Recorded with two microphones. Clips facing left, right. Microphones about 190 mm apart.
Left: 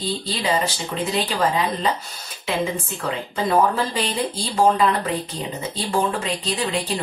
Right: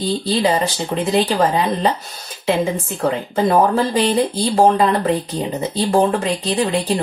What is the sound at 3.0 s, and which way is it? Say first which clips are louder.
Speech: right 9 dB; 50° right (ahead or behind).